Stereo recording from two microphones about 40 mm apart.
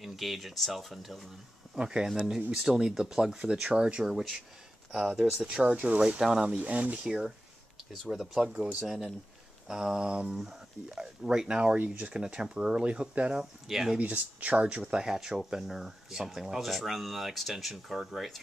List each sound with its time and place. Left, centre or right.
0.0 s speech: centre
1.8 s speech: centre
4.9 s speech: centre
5.4 s speech: right
5.7 s speech: right
6.1 s speech: centre
6.5 s speech: right
7.9 s speech: centre
8.4 s speech: centre
8.7 s speech: centre
9.7 s speech: centre
13.3 s speech: centre
13.9 s speech: right
14.6 s speech: right; by 18.4 s centre